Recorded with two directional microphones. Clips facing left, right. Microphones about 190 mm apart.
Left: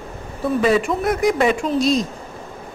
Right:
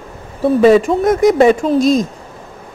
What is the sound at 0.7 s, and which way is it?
Speech, 45° right (ahead or behind).